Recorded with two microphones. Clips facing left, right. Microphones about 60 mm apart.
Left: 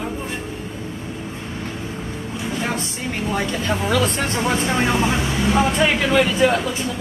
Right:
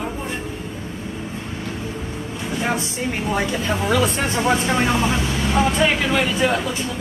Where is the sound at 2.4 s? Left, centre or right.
Centre.